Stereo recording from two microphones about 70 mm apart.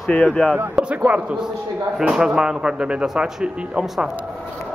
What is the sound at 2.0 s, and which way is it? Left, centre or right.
Speech, centre.